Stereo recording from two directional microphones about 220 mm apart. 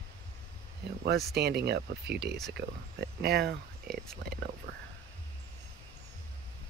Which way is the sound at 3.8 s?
Centre (ahead or behind).